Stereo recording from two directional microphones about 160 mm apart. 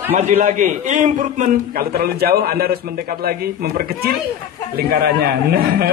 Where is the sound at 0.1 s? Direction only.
45° right (ahead or behind).